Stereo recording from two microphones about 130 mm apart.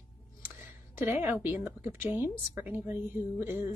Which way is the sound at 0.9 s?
15° right (ahead or behind).